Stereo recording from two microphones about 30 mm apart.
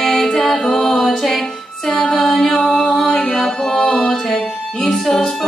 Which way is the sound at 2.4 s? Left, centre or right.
Centre.